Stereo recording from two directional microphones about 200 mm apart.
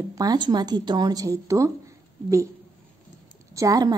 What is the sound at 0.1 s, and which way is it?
Speech, 20° right (ahead or behind).